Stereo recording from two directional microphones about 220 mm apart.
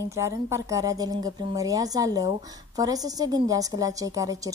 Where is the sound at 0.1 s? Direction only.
15° right (ahead or behind).